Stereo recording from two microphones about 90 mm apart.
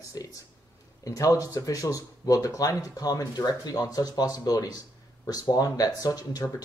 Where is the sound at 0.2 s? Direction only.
45° left (ahead or behind).